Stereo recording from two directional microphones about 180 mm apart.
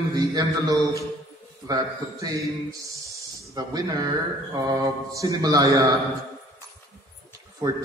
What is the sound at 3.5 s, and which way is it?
A man's voice, 20° right (ahead or behind).